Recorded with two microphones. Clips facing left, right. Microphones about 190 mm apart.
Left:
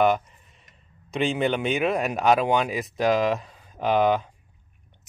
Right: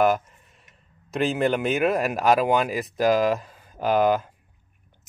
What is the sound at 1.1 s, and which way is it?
Speech, centre (ahead or behind).